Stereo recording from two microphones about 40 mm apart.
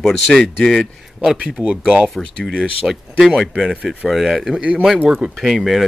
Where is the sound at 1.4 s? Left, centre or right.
Right.